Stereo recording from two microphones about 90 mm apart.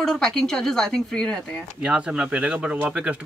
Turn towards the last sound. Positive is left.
turn(degrees=-15)  # may be behind; listen again after turning